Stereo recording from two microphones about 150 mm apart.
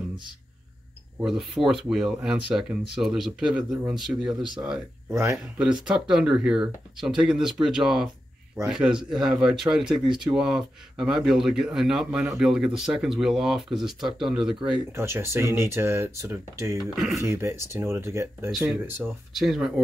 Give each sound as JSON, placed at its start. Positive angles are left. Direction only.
{"t": 1.2, "sound": "speech", "side_deg": 0}
{"t": 14.9, "sound": "speech", "side_deg": -15}
{"t": 16.8, "sound": "speech", "side_deg": 0}
{"t": 17.2, "sound": "speech", "side_deg": -20}
{"t": 19.3, "sound": "speech", "side_deg": 0}